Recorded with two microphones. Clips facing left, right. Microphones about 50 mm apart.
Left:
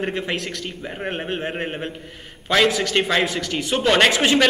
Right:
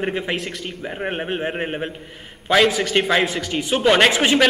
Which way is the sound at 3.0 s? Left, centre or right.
Centre.